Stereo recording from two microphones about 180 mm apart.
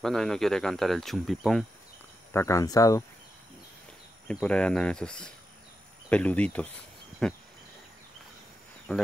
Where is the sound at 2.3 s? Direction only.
15° left (ahead or behind).